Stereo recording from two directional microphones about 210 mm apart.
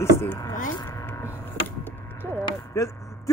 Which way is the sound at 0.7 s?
10° left (ahead or behind).